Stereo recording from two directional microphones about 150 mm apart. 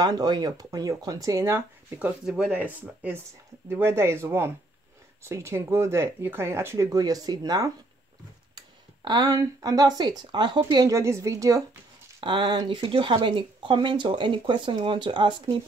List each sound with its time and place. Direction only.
0.0 s speech: 25° right (ahead or behind)